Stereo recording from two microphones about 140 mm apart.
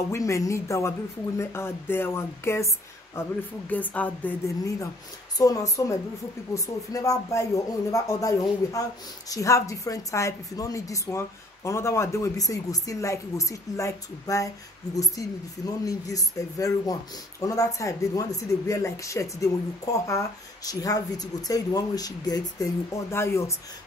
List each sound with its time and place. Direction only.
0.1 s speech: 25° left (ahead or behind)
5.4 s speech: 25° left (ahead or behind)